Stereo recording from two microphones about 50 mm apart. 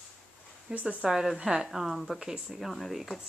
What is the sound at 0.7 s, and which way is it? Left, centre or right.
Speech, right.